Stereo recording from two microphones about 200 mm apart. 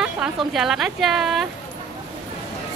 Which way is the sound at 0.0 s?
Centre (ahead or behind).